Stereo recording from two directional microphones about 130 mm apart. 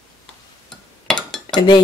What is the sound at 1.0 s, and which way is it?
Dishes, 5° left (ahead or behind).